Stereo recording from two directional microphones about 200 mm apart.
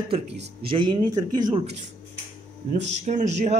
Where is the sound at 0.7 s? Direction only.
25° right (ahead or behind).